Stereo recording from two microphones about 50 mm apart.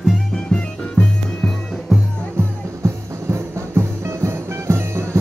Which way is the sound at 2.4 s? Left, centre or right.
Right.